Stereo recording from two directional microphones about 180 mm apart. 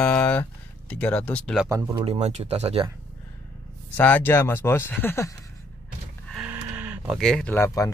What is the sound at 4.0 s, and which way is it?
Speech, 10° left (ahead or behind).